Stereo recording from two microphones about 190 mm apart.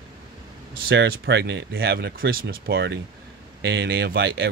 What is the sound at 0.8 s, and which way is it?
Speech, 60° right (ahead or behind).